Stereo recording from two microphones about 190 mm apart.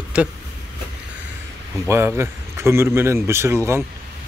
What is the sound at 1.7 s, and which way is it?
A man's voice, 10° right (ahead or behind).